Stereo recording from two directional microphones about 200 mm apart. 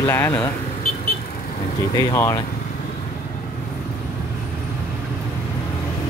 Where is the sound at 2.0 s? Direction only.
15° left (ahead or behind).